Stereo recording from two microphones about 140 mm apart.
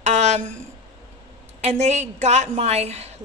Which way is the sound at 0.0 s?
55° right (ahead or behind).